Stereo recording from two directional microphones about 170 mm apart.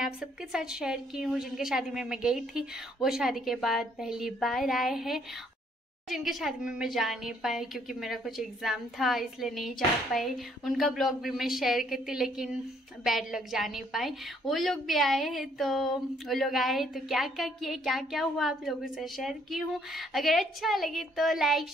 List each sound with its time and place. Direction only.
0.0 s a woman's voice: 5° right (ahead or behind)